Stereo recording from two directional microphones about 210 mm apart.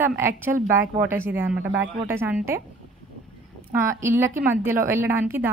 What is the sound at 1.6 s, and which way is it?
Speech, 55° right (ahead or behind).